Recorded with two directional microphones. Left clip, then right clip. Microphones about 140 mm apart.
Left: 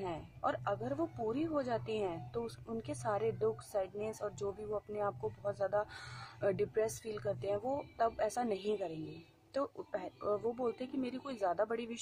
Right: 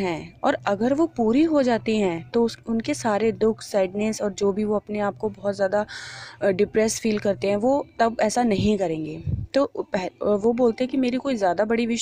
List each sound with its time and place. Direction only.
0.0 s speech: 45° right (ahead or behind)